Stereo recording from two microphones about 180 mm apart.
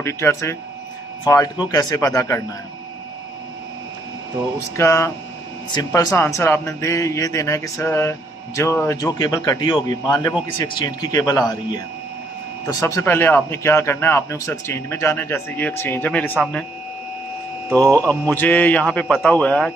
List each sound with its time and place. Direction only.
0.0 s a man's voice: 15° left (ahead or behind)
4.7 s a man's voice: 15° left (ahead or behind)
18.0 s speech: 10° left (ahead or behind)